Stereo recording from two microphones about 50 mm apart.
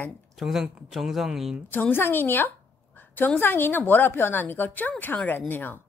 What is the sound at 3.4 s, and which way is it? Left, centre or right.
A woman's voice, left.